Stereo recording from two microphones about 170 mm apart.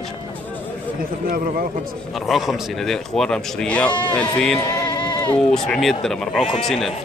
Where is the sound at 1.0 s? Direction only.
60° right (ahead or behind).